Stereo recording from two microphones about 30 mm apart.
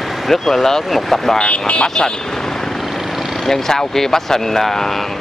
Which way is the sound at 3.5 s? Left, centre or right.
Centre.